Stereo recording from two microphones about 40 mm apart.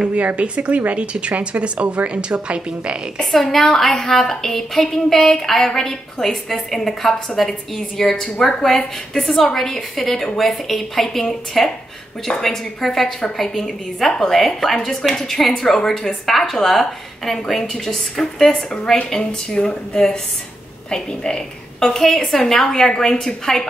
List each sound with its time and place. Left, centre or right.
0.4 s a woman's voice: right
3.3 s a woman's voice: centre